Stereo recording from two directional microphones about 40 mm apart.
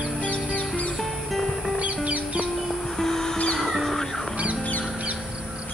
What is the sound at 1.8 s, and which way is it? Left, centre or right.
Music, right.